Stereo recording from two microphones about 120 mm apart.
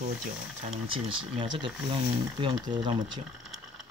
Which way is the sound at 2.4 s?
45° right (ahead or behind).